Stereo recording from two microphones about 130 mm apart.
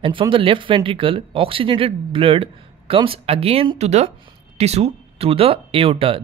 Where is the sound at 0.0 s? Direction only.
40° right (ahead or behind).